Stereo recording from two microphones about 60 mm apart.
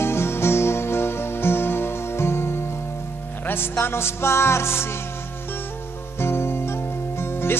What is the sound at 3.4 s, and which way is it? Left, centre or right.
Speech, left.